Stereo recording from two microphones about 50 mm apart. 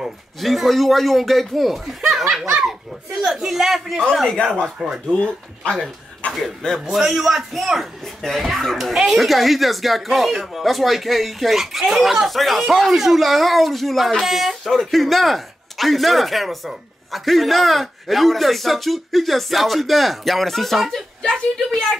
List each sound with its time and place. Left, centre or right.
0.0 s speech: centre
2.0 s snicker: centre
3.3 s speech: centre
4.1 s a woman's voice: centre
4.7 s speech: centre
5.1 s speech: left
6.9 s speech: centre
21.2 s a woman's voice: centre